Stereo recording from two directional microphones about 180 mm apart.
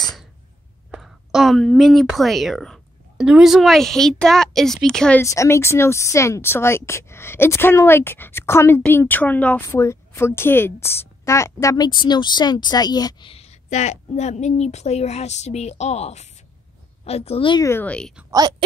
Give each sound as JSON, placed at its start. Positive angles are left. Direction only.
{"t": 0.0, "sound": "a sound", "side_deg": 0}
{"t": 0.9, "sound": "a woman's voice", "side_deg": 0}
{"t": 5.2, "sound": "a woman's voice", "side_deg": 15}
{"t": 17.6, "sound": "a woman's voice", "side_deg": 10}